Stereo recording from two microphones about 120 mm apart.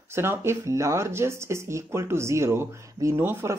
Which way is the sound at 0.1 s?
20° right (ahead or behind).